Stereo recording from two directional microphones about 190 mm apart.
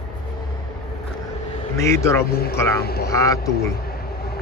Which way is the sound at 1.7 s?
15° left (ahead or behind).